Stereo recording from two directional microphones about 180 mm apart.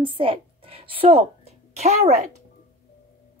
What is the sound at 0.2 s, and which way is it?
A woman's voice, 30° right (ahead or behind).